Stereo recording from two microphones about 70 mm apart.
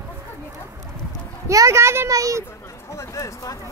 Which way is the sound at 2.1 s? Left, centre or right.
Right.